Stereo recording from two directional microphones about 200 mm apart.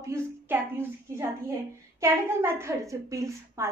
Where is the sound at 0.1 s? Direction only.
10° right (ahead or behind).